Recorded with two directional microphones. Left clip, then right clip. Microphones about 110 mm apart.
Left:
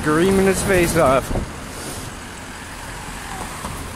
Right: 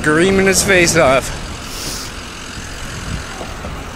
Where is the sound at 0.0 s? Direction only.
10° left (ahead or behind).